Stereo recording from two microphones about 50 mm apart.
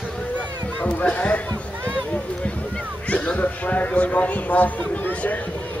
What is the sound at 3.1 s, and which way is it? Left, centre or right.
Speech, left.